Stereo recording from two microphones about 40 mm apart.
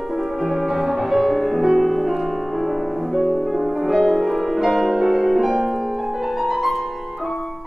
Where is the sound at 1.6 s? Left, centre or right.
Centre.